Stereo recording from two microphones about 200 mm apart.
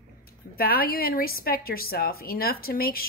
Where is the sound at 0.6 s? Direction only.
50° left (ahead or behind).